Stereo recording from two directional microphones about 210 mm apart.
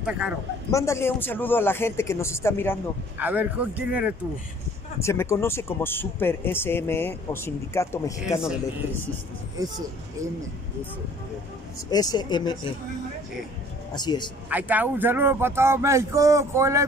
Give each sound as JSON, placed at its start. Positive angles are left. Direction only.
{"t": 0.0, "sound": "a man's voice", "side_deg": -5}
{"t": 0.7, "sound": "speech", "side_deg": 15}
{"t": 3.2, "sound": "speech", "side_deg": -10}
{"t": 5.0, "sound": "speech", "side_deg": 15}
{"t": 11.9, "sound": "speech", "side_deg": 20}
{"t": 13.9, "sound": "speech", "side_deg": 20}
{"t": 14.5, "sound": "speech", "side_deg": -10}